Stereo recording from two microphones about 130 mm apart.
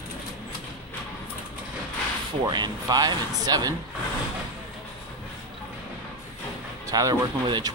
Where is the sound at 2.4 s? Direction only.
30° right (ahead or behind).